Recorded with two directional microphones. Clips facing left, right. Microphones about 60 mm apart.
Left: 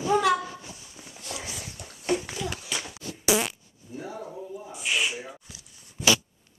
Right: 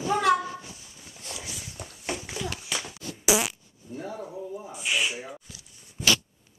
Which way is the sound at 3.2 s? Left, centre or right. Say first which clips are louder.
Even; centre.